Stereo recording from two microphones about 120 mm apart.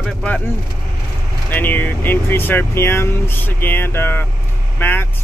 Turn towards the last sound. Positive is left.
turn(degrees=15)  # may be behind; listen again after turning